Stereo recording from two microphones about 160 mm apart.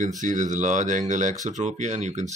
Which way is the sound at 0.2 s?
50° right (ahead or behind).